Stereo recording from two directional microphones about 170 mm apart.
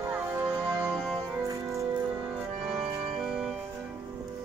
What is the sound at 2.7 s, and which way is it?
Organ, 30° right (ahead or behind).